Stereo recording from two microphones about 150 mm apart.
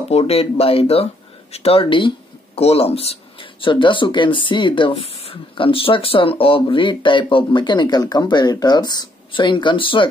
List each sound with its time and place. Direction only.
0.1 s speech: 40° left (ahead or behind)